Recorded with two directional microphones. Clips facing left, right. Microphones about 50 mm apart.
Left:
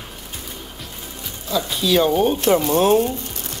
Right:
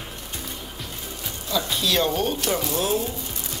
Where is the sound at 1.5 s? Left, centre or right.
Centre.